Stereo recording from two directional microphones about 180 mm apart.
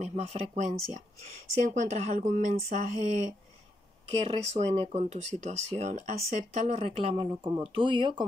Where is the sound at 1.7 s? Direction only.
40° right (ahead or behind).